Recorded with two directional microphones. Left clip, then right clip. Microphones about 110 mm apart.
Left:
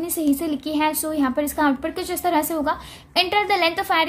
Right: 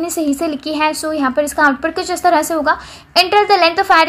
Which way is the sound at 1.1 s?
10° left (ahead or behind).